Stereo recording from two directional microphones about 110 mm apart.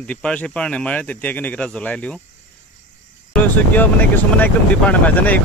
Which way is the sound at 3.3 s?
15° left (ahead or behind).